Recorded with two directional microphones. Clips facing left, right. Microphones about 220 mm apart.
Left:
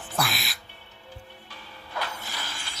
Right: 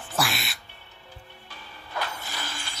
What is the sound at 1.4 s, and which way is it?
Music, 50° right (ahead or behind).